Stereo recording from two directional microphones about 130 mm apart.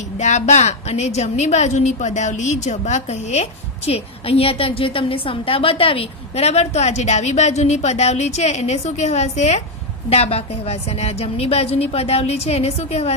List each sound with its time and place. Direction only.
0.2 s a woman's voice: 65° left (ahead or behind)